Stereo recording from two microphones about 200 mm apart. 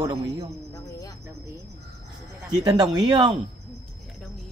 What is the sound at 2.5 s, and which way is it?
Speech, 20° right (ahead or behind).